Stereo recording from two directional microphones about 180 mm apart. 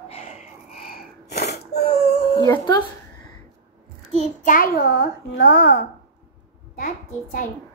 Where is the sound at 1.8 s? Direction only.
35° left (ahead or behind).